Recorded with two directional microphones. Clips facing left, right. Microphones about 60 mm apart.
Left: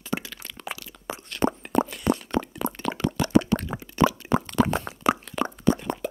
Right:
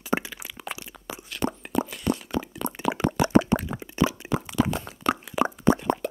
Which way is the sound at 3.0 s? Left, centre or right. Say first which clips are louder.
Right 1 dB; right.